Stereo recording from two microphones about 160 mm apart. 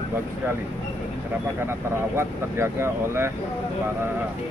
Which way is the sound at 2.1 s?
15° right (ahead or behind).